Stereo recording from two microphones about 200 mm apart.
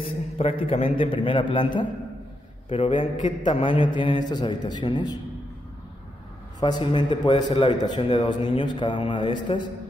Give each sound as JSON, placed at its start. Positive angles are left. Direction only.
{"t": 0.0, "sound": "a man's voice", "side_deg": 30}
{"t": 6.6, "sound": "a man's voice", "side_deg": 25}